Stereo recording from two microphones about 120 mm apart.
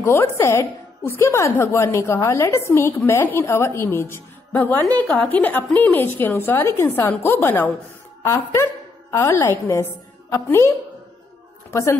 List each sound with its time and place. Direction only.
0.0 s a woman's voice: 20° left (ahead or behind)
11.7 s a woman's voice: 25° left (ahead or behind)